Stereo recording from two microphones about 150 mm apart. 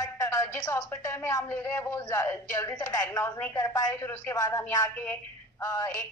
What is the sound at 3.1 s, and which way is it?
Speech, 15° left (ahead or behind).